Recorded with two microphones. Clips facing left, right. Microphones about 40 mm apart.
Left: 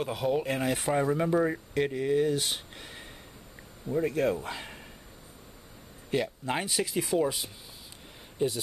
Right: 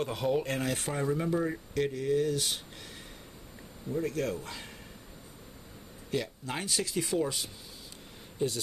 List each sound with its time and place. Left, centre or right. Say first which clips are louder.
0.0 s speech: left 1 dB; centre
0.9 s speech: left 4 dB; left
6.0 s speech: left 4 dB; left